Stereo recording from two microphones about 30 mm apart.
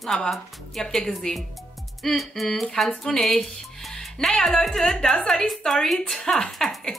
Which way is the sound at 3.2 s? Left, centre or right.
Centre.